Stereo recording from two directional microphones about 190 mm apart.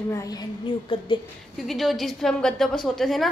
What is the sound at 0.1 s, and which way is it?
A woman's voice, 20° left (ahead or behind).